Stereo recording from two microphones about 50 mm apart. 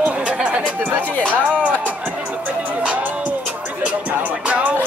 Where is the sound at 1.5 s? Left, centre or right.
Right.